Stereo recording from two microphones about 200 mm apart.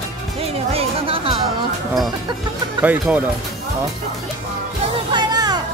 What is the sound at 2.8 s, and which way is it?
Speech, 5° right (ahead or behind).